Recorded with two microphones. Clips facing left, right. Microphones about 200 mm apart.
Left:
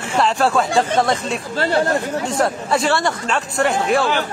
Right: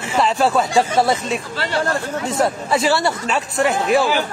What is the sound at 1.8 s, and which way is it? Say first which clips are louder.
Speech: left 3 dB; 20° left (ahead or behind).